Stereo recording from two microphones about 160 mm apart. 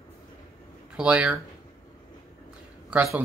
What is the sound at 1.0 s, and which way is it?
Speech, 5° right (ahead or behind).